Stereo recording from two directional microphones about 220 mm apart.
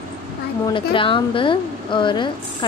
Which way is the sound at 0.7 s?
25° left (ahead or behind).